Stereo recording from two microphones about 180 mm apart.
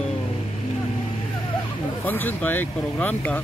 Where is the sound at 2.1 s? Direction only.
10° left (ahead or behind).